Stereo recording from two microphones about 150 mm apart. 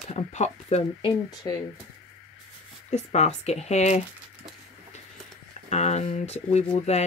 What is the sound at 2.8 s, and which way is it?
Speech, 50° left (ahead or behind).